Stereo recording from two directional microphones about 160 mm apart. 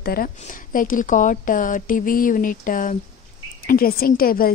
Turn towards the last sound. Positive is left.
turn(degrees=65)  # may be behind; listen again after turning